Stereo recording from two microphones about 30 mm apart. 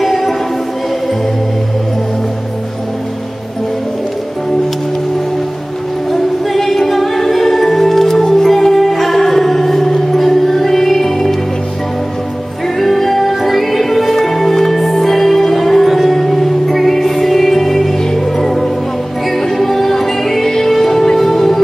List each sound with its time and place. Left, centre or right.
0.0 s music: centre
6.5 s music: centre
12.7 s music: centre